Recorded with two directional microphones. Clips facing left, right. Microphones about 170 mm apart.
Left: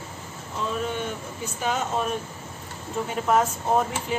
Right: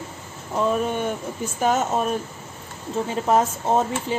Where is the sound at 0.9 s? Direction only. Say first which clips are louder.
Right 5 dB; 50° right (ahead or behind).